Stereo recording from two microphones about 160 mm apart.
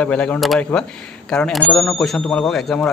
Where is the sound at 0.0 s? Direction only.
5° left (ahead or behind).